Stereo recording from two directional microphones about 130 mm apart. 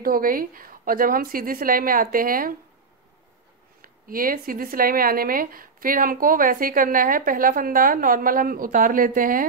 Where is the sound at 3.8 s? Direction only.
90° right.